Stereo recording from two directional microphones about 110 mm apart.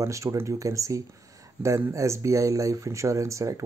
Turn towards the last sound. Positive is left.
turn(degrees=-30)  # may be behind; listen again after turning